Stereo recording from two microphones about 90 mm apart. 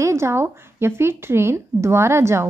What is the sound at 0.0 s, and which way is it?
A woman's voice, 30° right (ahead or behind).